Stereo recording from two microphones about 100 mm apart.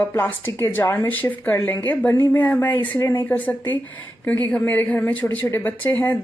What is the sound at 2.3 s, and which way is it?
Speech, 20° left (ahead or behind).